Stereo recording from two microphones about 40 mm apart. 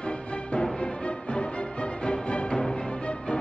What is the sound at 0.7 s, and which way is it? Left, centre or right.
Music, left.